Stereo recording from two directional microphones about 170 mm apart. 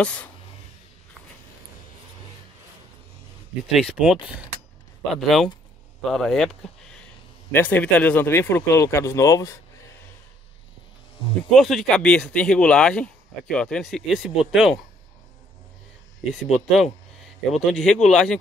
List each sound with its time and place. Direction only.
0.0 s speech: 5° left (ahead or behind)
3.7 s speech: 5° right (ahead or behind); by 9.6 s 15° left (ahead or behind)
11.5 s speech: centre (ahead or behind)
16.3 s speech: centre (ahead or behind)